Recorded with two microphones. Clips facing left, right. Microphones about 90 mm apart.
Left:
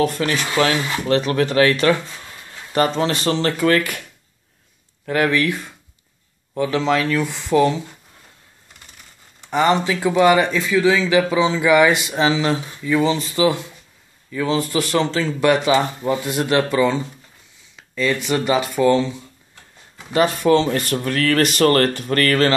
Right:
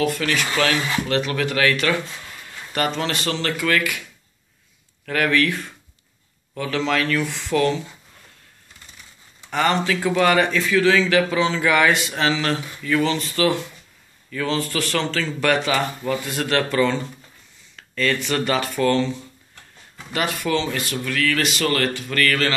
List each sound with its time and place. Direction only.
0.0 s speech: 30° left (ahead or behind)
5.0 s speech: 20° left (ahead or behind)
9.5 s speech: 15° left (ahead or behind)
20.1 s speech: 30° left (ahead or behind)